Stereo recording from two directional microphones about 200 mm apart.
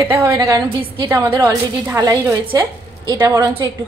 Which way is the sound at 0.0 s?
15° right (ahead or behind).